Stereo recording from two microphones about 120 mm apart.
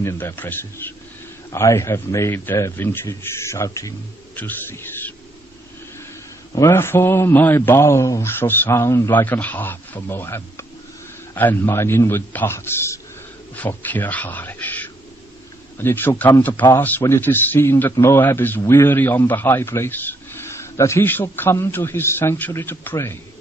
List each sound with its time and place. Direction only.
0.0 s a man's voice: 25° left (ahead or behind)
6.5 s a man's voice: 25° left (ahead or behind)